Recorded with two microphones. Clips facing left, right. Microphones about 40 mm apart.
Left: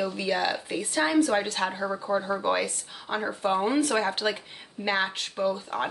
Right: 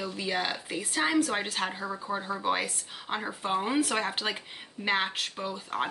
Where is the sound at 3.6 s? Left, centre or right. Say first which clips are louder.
Left 4 dB; centre.